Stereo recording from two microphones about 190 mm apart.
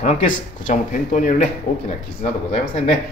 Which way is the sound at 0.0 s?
40° left (ahead or behind).